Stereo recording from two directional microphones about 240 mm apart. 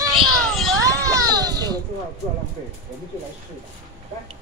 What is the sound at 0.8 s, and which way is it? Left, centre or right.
A child's voice, centre.